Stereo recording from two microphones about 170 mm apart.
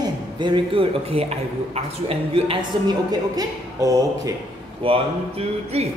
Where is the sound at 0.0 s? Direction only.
25° right (ahead or behind).